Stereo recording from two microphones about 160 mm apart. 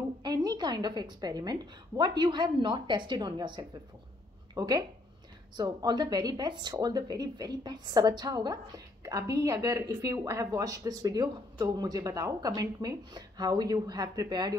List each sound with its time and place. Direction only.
0.2 s speech: 25° right (ahead or behind)